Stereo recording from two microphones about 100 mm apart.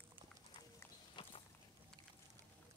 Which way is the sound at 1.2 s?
55° left (ahead or behind).